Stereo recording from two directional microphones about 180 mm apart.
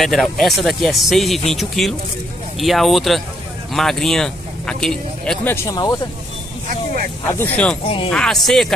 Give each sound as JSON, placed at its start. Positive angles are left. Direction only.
{"t": 0.0, "sound": "speech", "side_deg": 0}
{"t": 6.7, "sound": "vehicle", "side_deg": -50}
{"t": 7.3, "sound": "speech", "side_deg": 10}